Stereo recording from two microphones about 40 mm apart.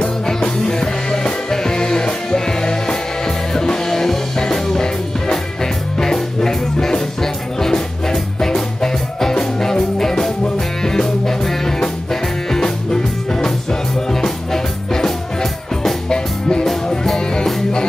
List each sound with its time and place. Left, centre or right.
0.0 s music: centre